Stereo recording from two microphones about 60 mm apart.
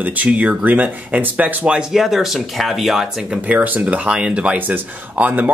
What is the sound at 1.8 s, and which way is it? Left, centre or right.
Speech, centre.